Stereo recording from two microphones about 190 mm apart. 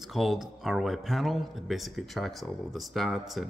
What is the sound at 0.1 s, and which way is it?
Speech, centre (ahead or behind).